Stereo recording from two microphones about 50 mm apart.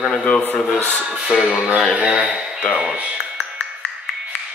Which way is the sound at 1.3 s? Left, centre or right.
Right.